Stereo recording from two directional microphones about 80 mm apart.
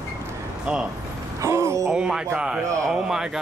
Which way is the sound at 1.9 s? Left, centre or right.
Centre.